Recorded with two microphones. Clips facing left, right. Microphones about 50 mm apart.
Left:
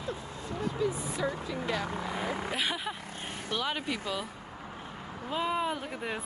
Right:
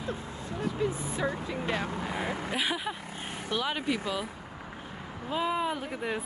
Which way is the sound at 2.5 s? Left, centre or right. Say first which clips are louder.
Right 2 dB; centre.